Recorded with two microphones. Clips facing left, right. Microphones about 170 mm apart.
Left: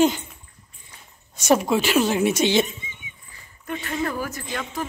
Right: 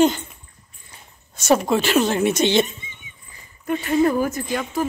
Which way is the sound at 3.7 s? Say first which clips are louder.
Right 9 dB; 15° right (ahead or behind).